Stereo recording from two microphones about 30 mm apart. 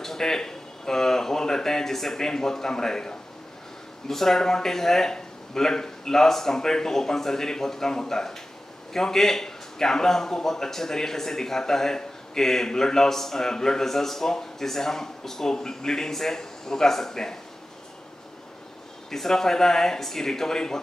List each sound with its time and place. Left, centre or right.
0.0 s a man's voice: centre
19.0 s a man's voice: centre